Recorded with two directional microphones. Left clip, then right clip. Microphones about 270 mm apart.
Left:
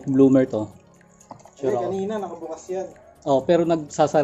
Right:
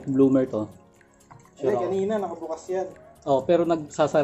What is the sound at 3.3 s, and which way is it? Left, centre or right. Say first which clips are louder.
Speech: left 2 dB; centre.